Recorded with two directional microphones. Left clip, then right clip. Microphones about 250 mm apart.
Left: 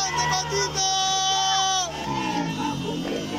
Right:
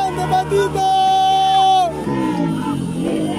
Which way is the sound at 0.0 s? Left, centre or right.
Right.